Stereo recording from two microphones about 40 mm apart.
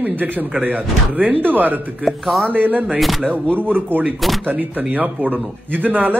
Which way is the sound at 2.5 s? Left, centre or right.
Right.